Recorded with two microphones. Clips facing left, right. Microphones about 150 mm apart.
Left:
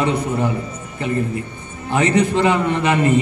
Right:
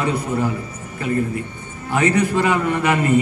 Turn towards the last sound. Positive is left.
turn(degrees=25)  # may be behind; listen again after turning